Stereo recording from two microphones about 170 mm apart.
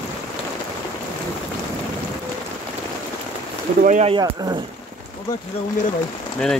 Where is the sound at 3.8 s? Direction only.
45° right (ahead or behind).